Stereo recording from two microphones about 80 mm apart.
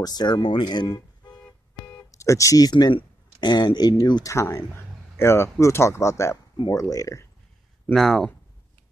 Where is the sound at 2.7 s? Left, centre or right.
Left.